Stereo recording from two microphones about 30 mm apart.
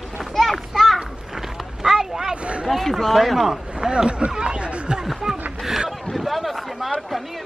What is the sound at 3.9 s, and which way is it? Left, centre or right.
Speech, right.